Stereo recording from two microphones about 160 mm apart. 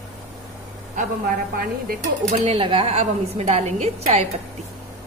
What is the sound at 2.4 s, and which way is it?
A woman's voice, 35° right (ahead or behind).